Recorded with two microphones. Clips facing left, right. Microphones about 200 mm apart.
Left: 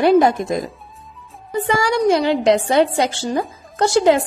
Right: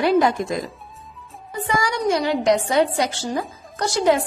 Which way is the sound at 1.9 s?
30° left (ahead or behind).